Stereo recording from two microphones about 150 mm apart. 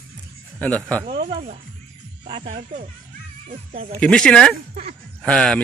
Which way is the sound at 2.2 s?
40° right (ahead or behind).